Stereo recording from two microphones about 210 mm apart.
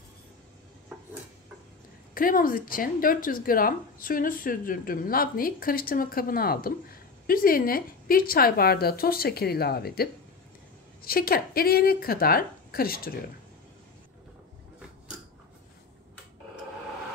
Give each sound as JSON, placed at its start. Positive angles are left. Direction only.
{"t": 2.1, "sound": "a woman's voice", "side_deg": 40}
{"t": 11.1, "sound": "a woman's voice", "side_deg": 45}